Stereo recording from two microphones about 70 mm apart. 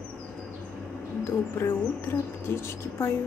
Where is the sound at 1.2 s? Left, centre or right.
Left.